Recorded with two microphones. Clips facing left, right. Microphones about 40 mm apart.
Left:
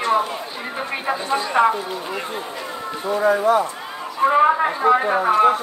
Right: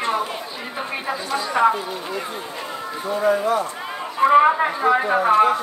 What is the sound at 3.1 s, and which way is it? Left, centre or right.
Speech, left.